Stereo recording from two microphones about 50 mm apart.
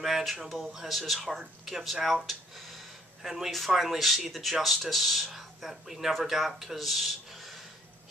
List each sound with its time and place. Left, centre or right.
0.0 s speech: centre